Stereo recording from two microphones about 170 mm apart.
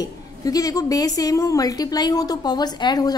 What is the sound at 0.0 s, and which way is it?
A woman's voice, 20° left (ahead or behind).